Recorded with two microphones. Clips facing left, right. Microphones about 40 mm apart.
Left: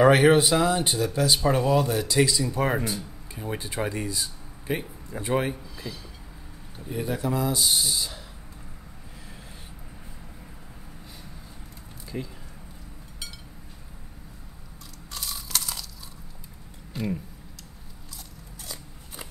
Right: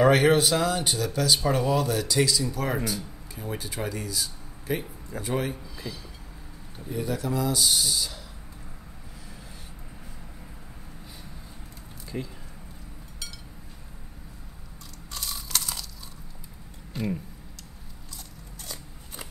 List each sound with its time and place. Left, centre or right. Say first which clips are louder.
0.0 s speech: left 2 dB; centre
5.5 s speech: left 1 dB; centre
6.9 s speech: left 1 dB; centre
12.1 s speech: even; centre
15.1 s a sound: even; centre
16.9 s speech: even; centre